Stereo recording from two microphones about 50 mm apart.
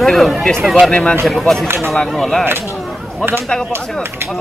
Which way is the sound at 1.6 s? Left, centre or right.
Right.